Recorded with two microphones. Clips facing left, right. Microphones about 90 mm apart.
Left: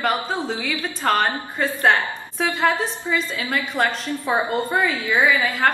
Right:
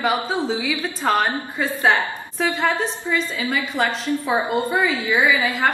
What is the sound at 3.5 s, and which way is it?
Speech, centre (ahead or behind).